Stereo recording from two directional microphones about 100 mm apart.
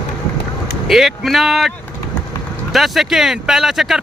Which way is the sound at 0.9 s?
Centre (ahead or behind).